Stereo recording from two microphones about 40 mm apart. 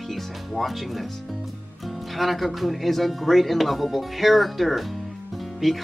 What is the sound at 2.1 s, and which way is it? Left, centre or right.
Speech, centre.